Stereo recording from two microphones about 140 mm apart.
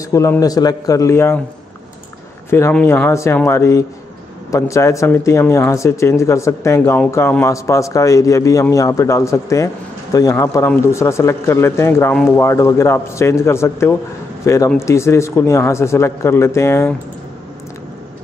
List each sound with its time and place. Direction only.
0.0 s a man's voice: 25° left (ahead or behind)
2.7 s a man's voice: 15° left (ahead or behind)